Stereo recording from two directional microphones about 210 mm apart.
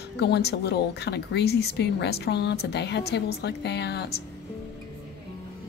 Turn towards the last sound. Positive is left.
turn(degrees=55)  # may be behind; listen again after turning